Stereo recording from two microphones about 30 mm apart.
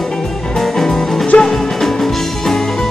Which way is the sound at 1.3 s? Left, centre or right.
Left.